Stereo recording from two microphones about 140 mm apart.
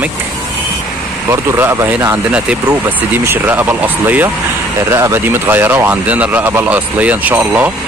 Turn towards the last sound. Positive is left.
turn(degrees=-15)  # may be behind; listen again after turning